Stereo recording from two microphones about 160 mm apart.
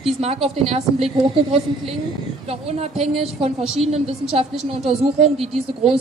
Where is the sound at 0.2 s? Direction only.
40° right (ahead or behind).